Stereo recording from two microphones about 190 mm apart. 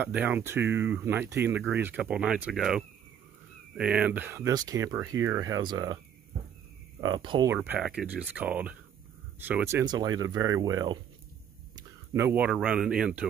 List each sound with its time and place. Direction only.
0.0 s speech: 10° right (ahead or behind)
7.0 s speech: 25° right (ahead or behind)
7.5 s speech: 10° right (ahead or behind)